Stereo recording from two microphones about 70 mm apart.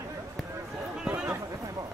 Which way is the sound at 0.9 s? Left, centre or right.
Centre.